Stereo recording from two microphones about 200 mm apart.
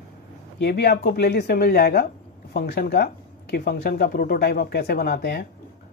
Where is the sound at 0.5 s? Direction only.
55° left (ahead or behind).